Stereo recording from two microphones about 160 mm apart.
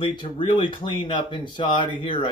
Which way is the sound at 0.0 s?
30° left (ahead or behind).